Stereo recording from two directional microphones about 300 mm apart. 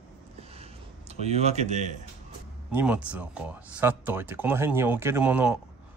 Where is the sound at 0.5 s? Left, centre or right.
Centre.